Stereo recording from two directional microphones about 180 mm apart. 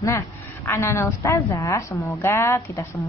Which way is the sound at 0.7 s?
15° left (ahead or behind).